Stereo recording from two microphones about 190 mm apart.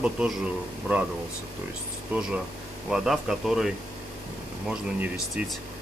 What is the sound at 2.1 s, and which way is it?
Speech, 5° right (ahead or behind).